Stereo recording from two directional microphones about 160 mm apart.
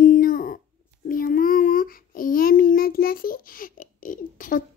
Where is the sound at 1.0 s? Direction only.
65° left (ahead or behind).